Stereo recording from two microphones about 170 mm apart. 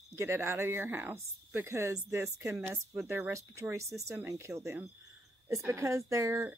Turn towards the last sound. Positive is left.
turn(degrees=-15)  # may be behind; listen again after turning